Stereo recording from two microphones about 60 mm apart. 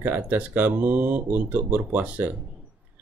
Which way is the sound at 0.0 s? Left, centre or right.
Right.